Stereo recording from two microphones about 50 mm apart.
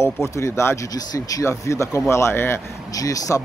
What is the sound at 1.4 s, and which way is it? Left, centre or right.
Speech, left.